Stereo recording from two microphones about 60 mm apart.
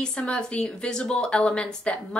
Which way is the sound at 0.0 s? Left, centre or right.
Centre.